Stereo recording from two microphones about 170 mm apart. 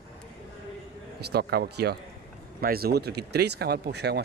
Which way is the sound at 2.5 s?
60° right (ahead or behind).